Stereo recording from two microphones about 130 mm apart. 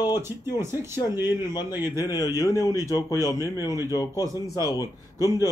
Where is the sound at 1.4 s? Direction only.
30° left (ahead or behind).